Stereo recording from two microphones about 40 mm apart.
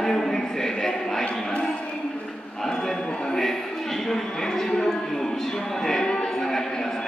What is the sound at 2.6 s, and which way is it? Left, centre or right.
Speech, centre.